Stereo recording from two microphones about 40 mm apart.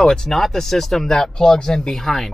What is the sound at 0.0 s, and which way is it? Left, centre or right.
Speech, centre.